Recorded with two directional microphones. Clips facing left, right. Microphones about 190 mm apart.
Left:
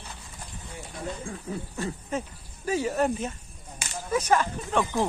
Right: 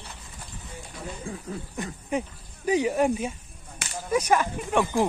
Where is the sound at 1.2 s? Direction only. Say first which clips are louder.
Even; 15° right (ahead or behind).